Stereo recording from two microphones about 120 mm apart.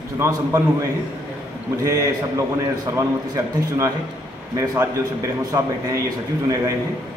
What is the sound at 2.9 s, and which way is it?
A man's voice, 25° right (ahead or behind).